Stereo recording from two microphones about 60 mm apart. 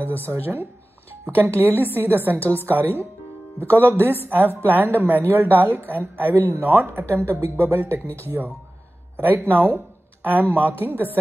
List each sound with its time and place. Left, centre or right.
0.3 s a woman's voice: right
7.2 s a woman's voice: right